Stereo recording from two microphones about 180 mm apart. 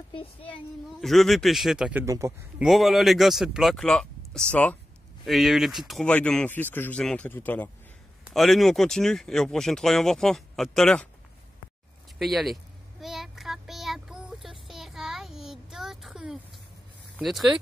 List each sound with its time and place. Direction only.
0.1 s a woman's voice: 30° left (ahead or behind)
1.0 s speech: centre (ahead or behind)
2.0 s speech: 15° right (ahead or behind)
2.6 s speech: centre (ahead or behind)
12.2 s speech: centre (ahead or behind)
13.0 s child singing: centre (ahead or behind)
17.2 s speech: centre (ahead or behind)